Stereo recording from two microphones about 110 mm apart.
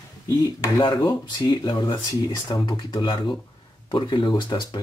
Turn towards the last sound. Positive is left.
turn(degrees=45)  # may be behind; listen again after turning